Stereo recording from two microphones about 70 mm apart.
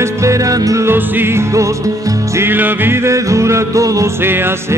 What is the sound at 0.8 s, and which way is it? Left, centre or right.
Music, right.